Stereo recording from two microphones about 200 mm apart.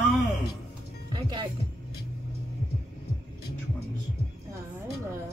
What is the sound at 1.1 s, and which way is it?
Music, 20° right (ahead or behind).